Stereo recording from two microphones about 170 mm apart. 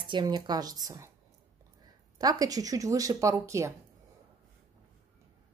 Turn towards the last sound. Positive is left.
turn(degrees=-15)  # may be behind; listen again after turning